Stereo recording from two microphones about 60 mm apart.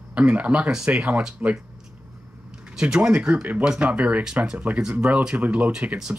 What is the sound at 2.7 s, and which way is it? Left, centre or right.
Speech, centre.